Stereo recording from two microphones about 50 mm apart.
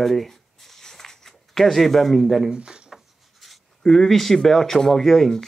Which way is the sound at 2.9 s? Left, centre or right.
Centre.